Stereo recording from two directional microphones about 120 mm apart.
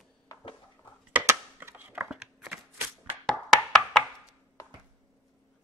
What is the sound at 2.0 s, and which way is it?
Shuffling cards, 5° right (ahead or behind).